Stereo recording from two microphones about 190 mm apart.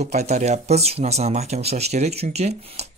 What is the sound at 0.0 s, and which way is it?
Speech, 35° right (ahead or behind).